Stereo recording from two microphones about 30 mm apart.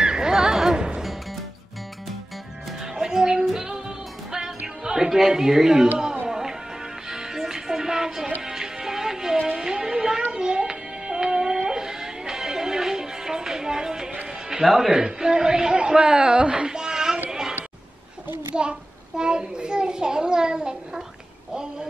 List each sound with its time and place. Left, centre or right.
0.0 s a sound: right
0.7 s music: right
2.8 s music: centre
14.5 s speech: centre
15.0 s a child's voice: right
17.3 s a sound: right
18.5 s a child's voice: right